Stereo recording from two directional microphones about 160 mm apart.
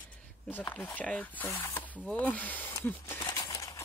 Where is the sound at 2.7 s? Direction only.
15° left (ahead or behind).